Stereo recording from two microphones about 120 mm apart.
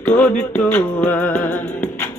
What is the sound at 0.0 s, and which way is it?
Music, 15° left (ahead or behind).